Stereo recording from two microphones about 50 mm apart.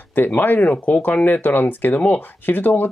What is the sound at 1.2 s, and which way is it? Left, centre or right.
Speech, left.